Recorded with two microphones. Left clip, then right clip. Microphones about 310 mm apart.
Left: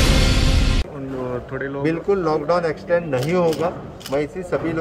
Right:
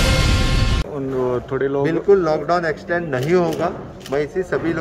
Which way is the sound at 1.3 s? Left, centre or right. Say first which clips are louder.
Right 6 dB; right.